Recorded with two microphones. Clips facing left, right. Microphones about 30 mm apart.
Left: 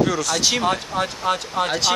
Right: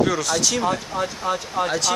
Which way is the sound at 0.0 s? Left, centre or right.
Centre.